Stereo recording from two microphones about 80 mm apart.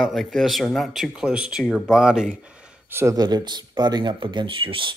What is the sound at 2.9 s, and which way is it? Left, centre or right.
Speech, right.